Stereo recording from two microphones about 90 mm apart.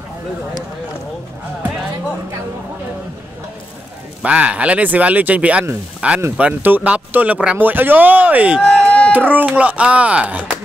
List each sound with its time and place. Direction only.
4.2 s speech: 15° right (ahead or behind)
8.5 s a sound: 10° left (ahead or behind)
9.3 s speech: 15° right (ahead or behind)